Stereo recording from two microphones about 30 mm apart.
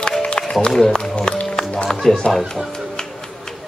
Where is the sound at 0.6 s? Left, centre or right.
Left.